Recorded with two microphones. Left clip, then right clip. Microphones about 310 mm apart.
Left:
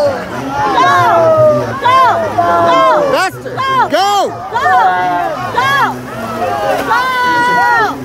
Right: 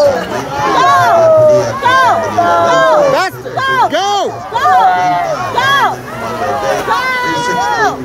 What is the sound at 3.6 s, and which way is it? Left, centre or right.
Speech, right.